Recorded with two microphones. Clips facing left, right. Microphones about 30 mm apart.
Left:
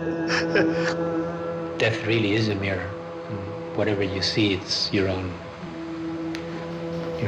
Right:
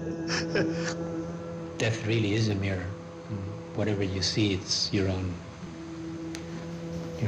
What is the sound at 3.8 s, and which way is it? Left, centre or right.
A man's voice, left.